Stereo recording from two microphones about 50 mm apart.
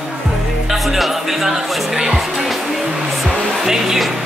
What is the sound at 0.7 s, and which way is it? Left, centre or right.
Music, centre.